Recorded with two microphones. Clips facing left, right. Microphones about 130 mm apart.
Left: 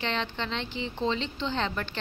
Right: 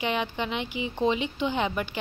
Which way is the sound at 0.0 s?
10° right (ahead or behind).